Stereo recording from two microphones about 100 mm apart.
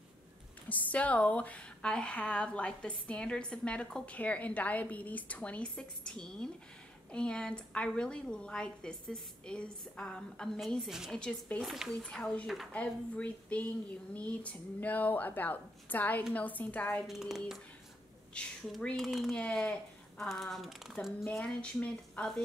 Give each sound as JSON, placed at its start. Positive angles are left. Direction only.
{"t": 0.7, "sound": "a woman's voice", "side_deg": 15}
{"t": 11.1, "sound": "a woman's voice", "side_deg": 10}
{"t": 11.6, "sound": "speech", "side_deg": -5}
{"t": 12.0, "sound": "a woman's voice", "side_deg": 10}
{"t": 17.1, "sound": "speech", "side_deg": -5}
{"t": 18.4, "sound": "a woman's voice", "side_deg": 10}
{"t": 21.4, "sound": "a woman's voice", "side_deg": 10}